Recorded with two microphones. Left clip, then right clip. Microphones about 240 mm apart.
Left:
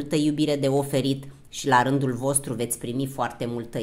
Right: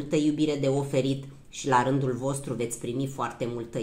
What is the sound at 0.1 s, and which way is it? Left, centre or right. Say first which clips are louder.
Speech: left 2 dB; left.